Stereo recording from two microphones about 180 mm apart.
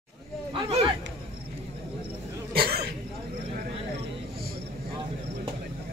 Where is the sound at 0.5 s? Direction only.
30° right (ahead or behind).